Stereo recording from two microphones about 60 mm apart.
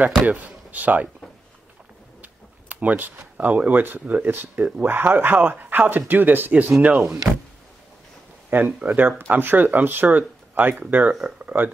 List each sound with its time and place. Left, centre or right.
0.3 s speech: right
2.2 s speech: right
6.8 s speech: centre
8.5 s speech: right